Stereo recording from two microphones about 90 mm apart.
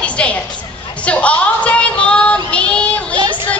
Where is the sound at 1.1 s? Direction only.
15° left (ahead or behind).